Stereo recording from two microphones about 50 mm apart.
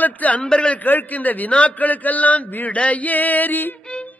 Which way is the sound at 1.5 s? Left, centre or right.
Left.